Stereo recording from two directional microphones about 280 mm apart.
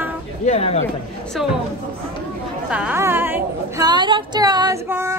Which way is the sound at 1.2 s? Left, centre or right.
Centre.